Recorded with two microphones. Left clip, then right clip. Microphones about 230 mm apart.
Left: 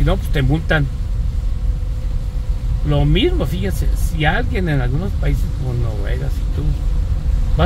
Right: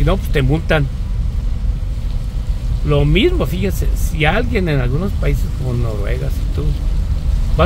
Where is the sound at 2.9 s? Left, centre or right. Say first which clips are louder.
Right 3 dB; centre.